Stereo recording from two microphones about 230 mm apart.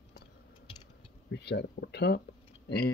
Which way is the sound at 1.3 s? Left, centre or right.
Left.